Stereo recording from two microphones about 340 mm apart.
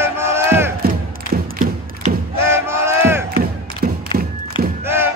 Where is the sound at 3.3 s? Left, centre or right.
Right.